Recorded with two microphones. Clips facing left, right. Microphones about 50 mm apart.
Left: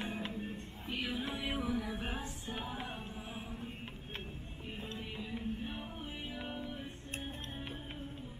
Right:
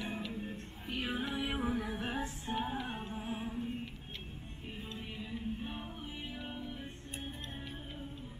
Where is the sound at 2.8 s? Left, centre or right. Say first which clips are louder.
Right 3 dB; right.